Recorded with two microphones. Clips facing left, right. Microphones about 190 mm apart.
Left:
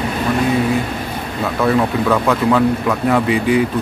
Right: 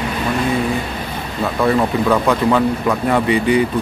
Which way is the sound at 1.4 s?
Centre (ahead or behind).